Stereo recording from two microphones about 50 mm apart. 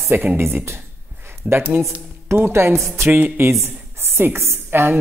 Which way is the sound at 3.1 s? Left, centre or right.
Right.